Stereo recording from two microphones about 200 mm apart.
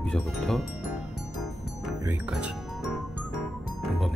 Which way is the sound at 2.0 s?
10° right (ahead or behind).